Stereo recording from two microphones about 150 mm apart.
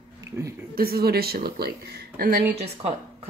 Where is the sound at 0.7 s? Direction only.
90° right.